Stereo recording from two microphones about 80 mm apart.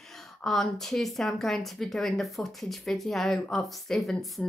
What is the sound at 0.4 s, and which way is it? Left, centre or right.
Speech, centre.